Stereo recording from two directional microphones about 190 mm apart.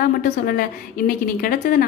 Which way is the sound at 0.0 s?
45° left (ahead or behind).